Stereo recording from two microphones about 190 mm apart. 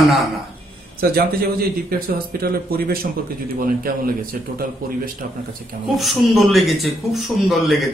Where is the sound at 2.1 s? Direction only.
50° right (ahead or behind).